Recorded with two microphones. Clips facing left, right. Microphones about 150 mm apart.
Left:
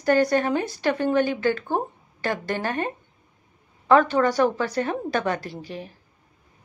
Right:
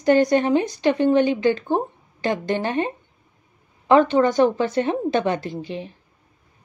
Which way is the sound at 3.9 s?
20° right (ahead or behind).